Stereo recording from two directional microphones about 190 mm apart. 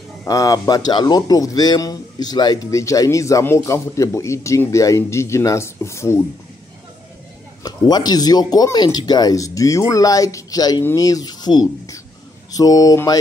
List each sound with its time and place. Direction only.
0.2 s speech: 20° left (ahead or behind)
7.6 s speech: 20° left (ahead or behind)